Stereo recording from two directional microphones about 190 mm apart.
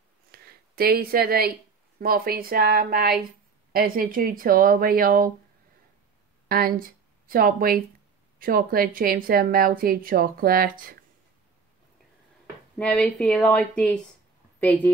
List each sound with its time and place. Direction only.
0.3 s a sound: 55° right (ahead or behind)
2.0 s a woman's voice: 50° right (ahead or behind)
6.5 s a woman's voice: 50° right (ahead or behind)
12.7 s a woman's voice: 5° left (ahead or behind)